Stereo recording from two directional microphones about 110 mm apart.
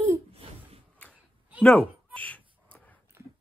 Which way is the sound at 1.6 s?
10° left (ahead or behind).